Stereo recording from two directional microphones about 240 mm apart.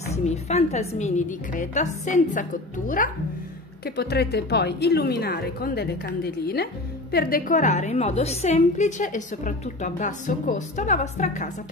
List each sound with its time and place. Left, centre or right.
0.0 s a woman's voice: left
3.8 s speech: left